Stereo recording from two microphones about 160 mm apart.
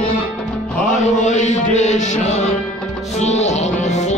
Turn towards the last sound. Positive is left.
turn(degrees=45)  # may be behind; listen again after turning